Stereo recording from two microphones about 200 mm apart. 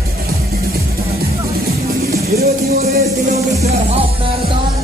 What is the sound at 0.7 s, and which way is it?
Music, 50° right (ahead or behind).